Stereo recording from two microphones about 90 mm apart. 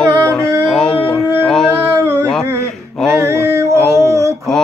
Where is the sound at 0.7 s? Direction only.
5° left (ahead or behind).